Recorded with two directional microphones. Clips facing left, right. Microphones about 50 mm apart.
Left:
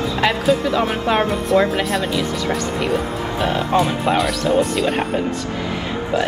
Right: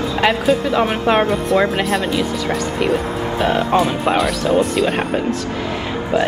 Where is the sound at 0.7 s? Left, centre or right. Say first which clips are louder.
Right 3 dB; centre.